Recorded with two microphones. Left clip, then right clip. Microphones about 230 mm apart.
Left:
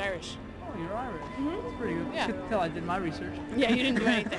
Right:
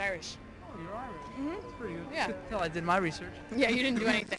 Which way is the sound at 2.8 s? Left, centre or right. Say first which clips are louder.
Right 3 dB; right.